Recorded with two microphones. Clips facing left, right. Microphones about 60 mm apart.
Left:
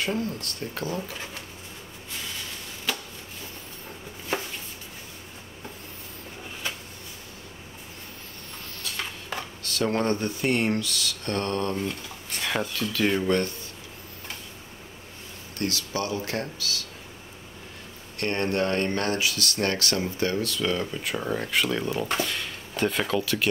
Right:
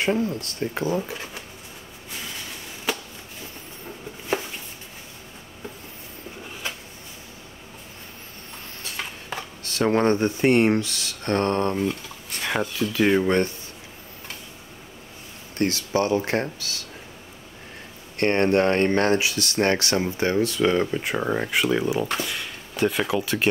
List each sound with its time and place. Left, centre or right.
0.0 s speech: right
9.7 s speech: right
11.7 s speech: centre
15.5 s speech: right
18.1 s speech: right
21.5 s speech: centre
23.2 s speech: right